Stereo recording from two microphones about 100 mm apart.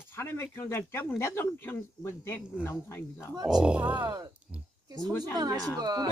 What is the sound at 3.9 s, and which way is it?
Speech, 45° right (ahead or behind).